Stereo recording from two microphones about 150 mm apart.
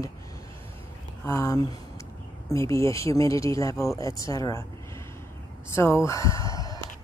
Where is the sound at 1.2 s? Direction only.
15° left (ahead or behind).